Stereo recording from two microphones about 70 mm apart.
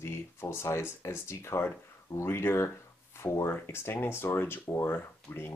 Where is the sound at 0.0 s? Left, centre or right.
Left.